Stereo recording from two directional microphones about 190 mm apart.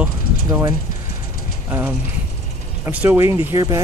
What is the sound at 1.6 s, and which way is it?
Speech, 10° right (ahead or behind).